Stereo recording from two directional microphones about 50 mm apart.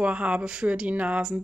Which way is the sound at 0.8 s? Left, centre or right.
Right.